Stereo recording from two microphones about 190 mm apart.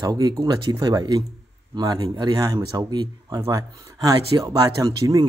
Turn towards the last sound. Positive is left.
turn(degrees=-20)  # may be behind; listen again after turning